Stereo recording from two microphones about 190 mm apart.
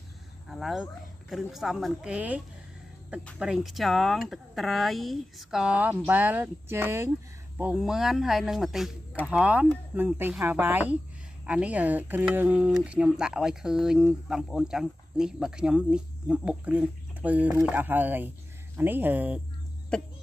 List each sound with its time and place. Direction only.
0.5 s speech: centre (ahead or behind)
19.9 s music: 5° left (ahead or behind)